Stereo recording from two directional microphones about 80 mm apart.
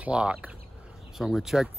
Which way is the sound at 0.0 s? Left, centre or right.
Centre.